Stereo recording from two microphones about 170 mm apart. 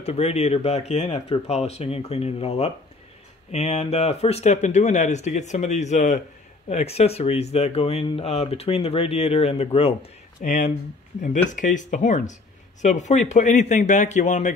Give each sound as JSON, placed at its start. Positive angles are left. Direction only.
{"t": 0.0, "sound": "speech", "side_deg": 40}